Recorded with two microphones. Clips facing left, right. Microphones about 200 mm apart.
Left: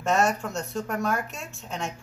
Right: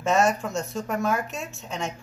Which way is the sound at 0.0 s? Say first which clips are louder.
Right 2 dB; centre (ahead or behind).